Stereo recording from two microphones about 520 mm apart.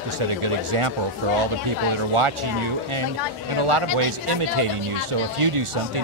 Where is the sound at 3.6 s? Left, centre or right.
Right.